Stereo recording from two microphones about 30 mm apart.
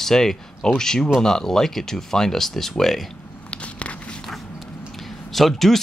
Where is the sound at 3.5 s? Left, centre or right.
Left.